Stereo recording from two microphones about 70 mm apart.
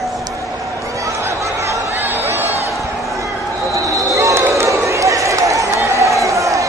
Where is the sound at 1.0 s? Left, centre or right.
Right.